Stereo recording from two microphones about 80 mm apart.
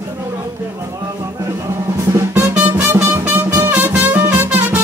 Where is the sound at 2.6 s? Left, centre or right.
Right.